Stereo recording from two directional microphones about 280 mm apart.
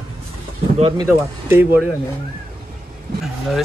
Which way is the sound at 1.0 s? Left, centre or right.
Centre.